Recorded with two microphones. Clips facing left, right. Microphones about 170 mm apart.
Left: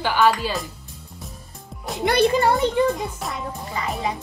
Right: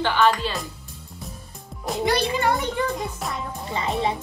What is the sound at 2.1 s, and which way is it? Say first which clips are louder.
Speech: left 6 dB; 55° left (ahead or behind).